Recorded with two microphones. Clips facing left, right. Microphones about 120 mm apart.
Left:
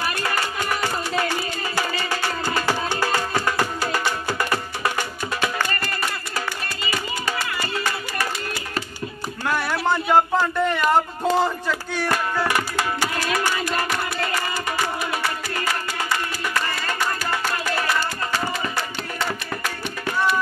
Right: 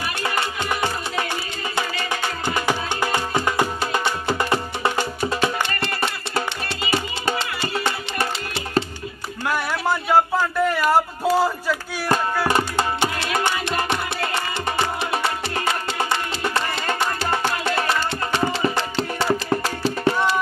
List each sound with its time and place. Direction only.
0.2 s music: 20° right (ahead or behind)
9.5 s a sound: 5° right (ahead or behind)
12.4 s music: 25° right (ahead or behind)